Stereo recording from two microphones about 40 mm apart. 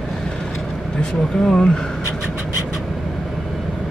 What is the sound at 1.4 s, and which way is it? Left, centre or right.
Speech, centre.